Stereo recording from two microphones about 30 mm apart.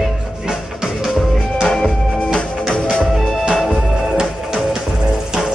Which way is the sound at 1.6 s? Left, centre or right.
Left.